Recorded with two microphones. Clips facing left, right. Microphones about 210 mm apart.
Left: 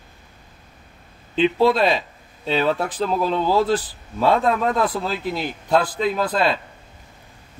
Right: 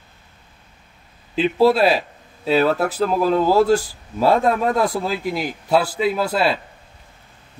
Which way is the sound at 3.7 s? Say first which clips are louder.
Right 4 dB; 10° right (ahead or behind).